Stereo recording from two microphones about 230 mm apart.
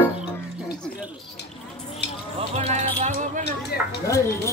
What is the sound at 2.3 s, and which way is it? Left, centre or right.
Music, right.